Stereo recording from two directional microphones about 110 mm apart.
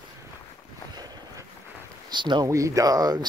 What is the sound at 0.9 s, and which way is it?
Boat, 35° right (ahead or behind).